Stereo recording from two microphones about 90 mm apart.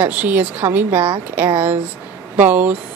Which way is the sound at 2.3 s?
20° right (ahead or behind).